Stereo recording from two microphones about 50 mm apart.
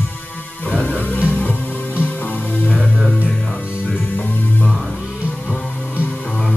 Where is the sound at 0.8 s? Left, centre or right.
Left.